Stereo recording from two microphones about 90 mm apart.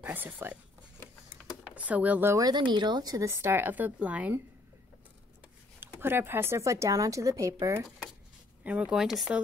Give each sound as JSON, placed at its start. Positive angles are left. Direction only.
{"t": 0.0, "sound": "a sound", "side_deg": -20}
{"t": 1.8, "sound": "speech", "side_deg": -15}
{"t": 2.3, "sound": "speech", "side_deg": -45}
{"t": 5.8, "sound": "speech", "side_deg": -25}
{"t": 8.6, "sound": "speech", "side_deg": -10}